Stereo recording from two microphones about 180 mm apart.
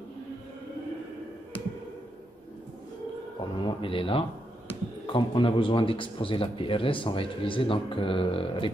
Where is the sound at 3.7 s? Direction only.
30° left (ahead or behind).